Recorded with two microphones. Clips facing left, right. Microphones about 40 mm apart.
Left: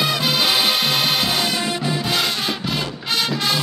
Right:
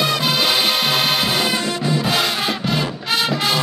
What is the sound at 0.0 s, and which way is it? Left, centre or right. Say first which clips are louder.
Music: right 1 dB; centre.